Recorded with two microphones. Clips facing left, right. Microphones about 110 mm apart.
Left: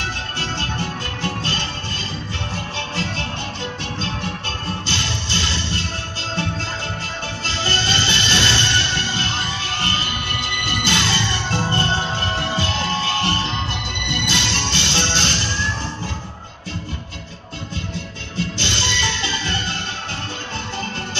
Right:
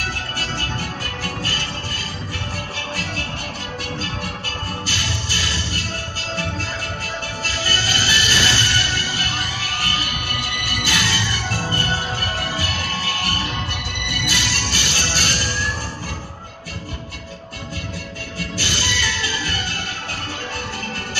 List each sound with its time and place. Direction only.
0.0 s music: 25° left (ahead or behind)
7.4 s music: 25° left (ahead or behind)
18.4 s music: 25° left (ahead or behind)